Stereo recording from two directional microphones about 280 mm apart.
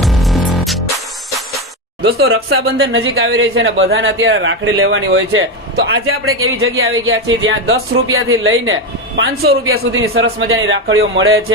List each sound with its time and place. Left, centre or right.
0.0 s music: centre
2.0 s speech: right